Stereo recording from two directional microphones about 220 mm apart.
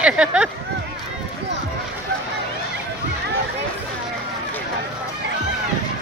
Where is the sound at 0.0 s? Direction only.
5° right (ahead or behind).